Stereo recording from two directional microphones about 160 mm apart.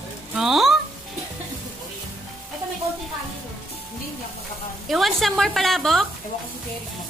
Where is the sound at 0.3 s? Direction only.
5° right (ahead or behind).